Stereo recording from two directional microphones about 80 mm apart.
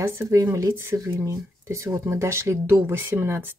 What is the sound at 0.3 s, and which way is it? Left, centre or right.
Speech, right.